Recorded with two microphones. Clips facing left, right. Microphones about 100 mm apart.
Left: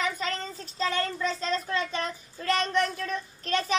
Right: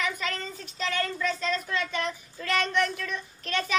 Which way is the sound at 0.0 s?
35° left (ahead or behind).